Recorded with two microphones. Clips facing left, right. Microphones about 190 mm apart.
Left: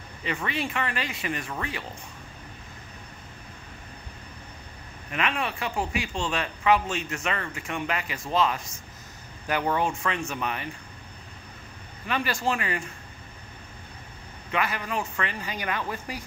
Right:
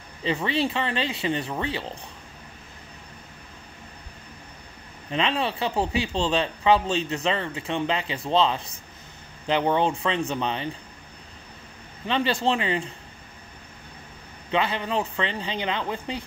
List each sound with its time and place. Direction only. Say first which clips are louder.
0.2 s speech: right 6 dB; 30° right (ahead or behind)
5.1 s speech: right 4 dB; 30° right (ahead or behind)
12.4 s speech: right 4 dB; 25° right (ahead or behind)
14.5 s speech: right 4 dB; 25° right (ahead or behind)